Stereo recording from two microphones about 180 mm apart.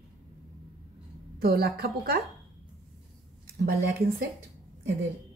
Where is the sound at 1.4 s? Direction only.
60° right (ahead or behind).